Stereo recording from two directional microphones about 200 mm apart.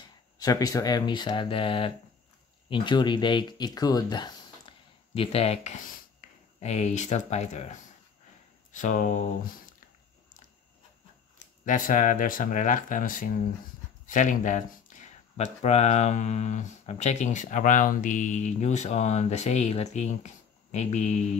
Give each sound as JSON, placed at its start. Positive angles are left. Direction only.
{"t": 0.4, "sound": "speech", "side_deg": 20}
{"t": 6.2, "sound": "a sound", "side_deg": 40}
{"t": 6.6, "sound": "speech", "side_deg": 35}
{"t": 11.6, "sound": "speech", "side_deg": 40}